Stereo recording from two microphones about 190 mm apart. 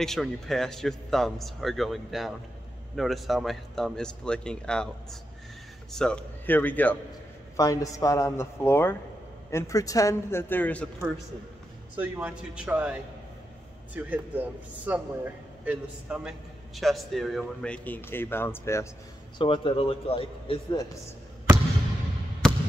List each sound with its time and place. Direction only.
0.0 s speech: centre (ahead or behind)
5.9 s a man's voice: 5° left (ahead or behind)
12.0 s speech: 5° right (ahead or behind); by 18.9 s 15° left (ahead or behind)
19.3 s a man's voice: 25° left (ahead or behind)